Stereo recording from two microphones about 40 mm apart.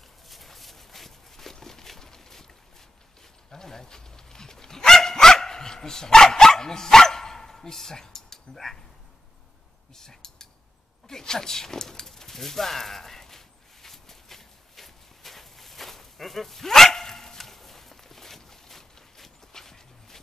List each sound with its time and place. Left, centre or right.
0.3 s a sound: centre
3.5 s dog: centre
9.9 s speech: centre
13.8 s walk: centre